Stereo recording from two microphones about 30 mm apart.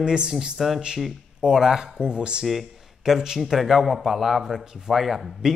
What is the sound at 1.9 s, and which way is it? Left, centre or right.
Speech, right.